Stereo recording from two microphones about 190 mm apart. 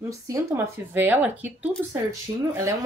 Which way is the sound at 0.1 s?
15° right (ahead or behind).